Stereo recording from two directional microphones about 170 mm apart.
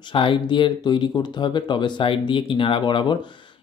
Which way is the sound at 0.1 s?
30° left (ahead or behind).